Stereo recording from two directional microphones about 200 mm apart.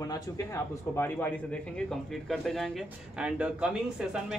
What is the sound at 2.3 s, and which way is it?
Speech, centre (ahead or behind).